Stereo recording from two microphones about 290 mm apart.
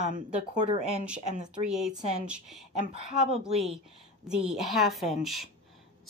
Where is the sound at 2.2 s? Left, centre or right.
Centre.